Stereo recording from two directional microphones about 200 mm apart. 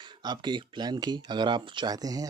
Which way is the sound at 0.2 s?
20° right (ahead or behind).